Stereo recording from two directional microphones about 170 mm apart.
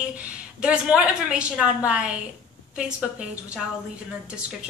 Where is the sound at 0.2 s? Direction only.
5° right (ahead or behind).